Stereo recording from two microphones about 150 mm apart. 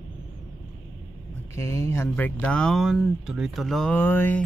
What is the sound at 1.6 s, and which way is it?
Speech, 20° left (ahead or behind).